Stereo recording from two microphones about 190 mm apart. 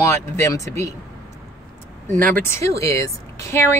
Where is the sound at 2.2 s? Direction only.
10° left (ahead or behind).